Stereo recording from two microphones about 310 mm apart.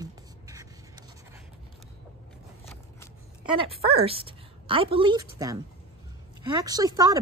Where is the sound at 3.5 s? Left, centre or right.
Centre.